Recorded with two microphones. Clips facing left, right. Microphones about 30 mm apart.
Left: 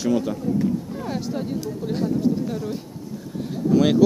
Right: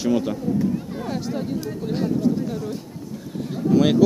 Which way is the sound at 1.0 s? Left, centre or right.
Centre.